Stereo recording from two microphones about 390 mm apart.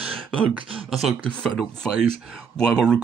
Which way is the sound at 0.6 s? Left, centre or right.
Centre.